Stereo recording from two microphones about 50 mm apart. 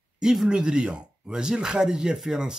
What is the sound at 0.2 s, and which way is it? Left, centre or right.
Speech, centre.